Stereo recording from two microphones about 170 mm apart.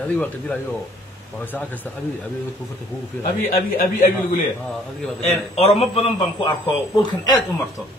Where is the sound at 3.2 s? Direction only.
60° left (ahead or behind).